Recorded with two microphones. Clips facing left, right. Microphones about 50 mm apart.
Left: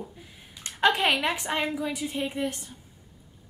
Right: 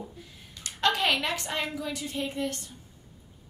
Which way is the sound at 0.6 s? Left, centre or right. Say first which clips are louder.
Left 3 dB; centre.